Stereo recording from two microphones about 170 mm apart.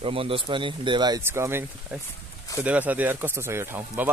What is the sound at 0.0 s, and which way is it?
Speech, 35° right (ahead or behind).